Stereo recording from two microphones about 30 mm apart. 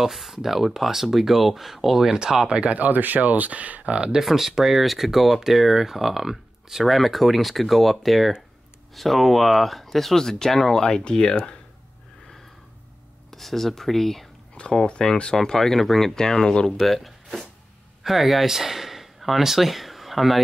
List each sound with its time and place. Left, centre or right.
0.0 s speech: centre
2.4 s speech: right
2.7 s speech: right
3.9 s speech: right
4.2 s speech: centre
10.8 s speech: left
13.3 s speech: centre
14.6 s speech: left; by 16.1 s centre
16.2 s speech: left
16.8 s speech: centre